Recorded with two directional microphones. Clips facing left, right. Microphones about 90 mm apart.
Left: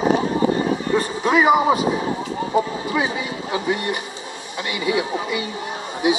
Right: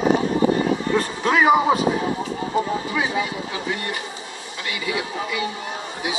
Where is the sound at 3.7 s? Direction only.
25° left (ahead or behind).